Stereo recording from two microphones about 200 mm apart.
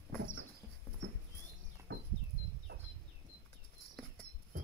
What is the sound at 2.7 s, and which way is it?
Chicken, 50° right (ahead or behind).